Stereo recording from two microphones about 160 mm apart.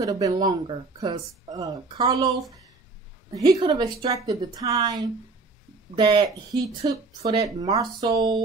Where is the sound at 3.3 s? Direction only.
25° right (ahead or behind).